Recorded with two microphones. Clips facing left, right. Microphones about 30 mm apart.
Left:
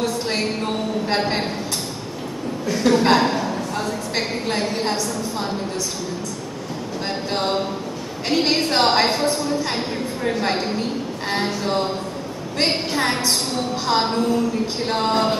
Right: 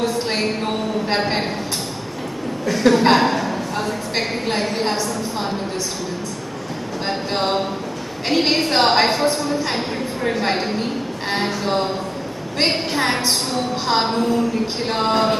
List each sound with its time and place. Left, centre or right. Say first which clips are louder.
0.0 s a sound: right 2 dB; right
1.1 s a woman's voice: right 1 dB; centre
2.8 s a woman's voice: right 2 dB; centre
3.2 s a sound: right 1 dB; centre
4.6 s a woman's voice: right 1 dB; centre
7.3 s a woman's voice: right 1 dB; centre